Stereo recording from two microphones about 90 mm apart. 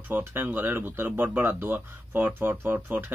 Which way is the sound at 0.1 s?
25° right (ahead or behind).